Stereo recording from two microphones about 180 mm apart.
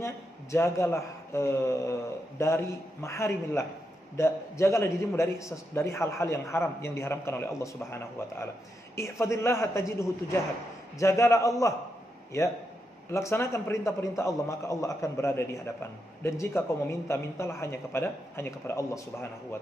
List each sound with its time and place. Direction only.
0.0 s a man's voice: 15° left (ahead or behind)
8.9 s a man's voice: 15° left (ahead or behind)
13.1 s a man's voice: 15° left (ahead or behind)